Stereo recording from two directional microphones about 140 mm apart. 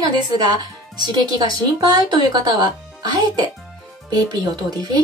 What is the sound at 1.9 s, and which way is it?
Speech, 30° right (ahead or behind).